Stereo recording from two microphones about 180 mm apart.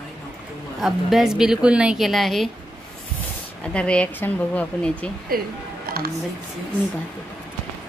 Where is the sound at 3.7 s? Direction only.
5° left (ahead or behind).